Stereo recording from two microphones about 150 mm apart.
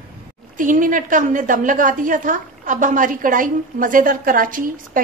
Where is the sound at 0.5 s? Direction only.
60° right (ahead or behind).